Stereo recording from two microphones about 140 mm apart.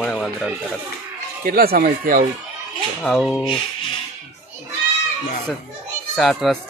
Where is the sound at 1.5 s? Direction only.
90° right.